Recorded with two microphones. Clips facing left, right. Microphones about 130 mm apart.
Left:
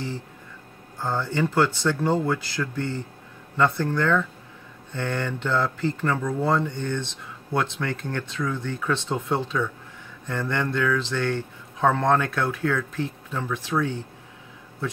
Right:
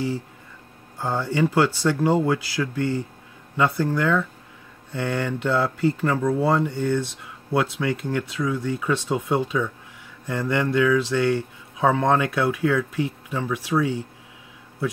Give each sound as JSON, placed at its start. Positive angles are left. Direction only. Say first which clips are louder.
{"t": 0.9, "sound": "speech", "louder": "right 2 dB", "side_deg": -10}